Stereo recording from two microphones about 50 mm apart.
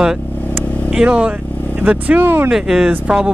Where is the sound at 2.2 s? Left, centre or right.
Right.